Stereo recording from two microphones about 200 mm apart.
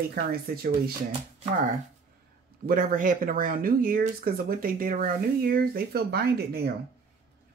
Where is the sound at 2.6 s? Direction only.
45° right (ahead or behind).